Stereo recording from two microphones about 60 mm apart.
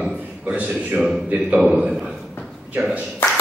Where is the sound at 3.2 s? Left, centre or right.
Left.